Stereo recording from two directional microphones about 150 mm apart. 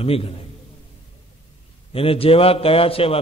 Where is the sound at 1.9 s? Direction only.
40° left (ahead or behind).